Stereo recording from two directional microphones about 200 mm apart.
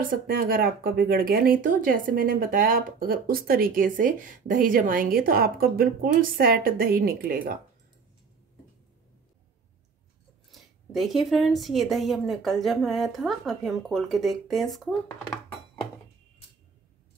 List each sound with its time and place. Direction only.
0.1 s speech: 45° right (ahead or behind)
10.5 s a woman's voice: centre (ahead or behind)